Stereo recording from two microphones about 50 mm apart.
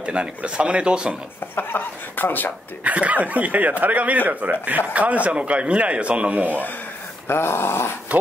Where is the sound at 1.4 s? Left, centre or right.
Left.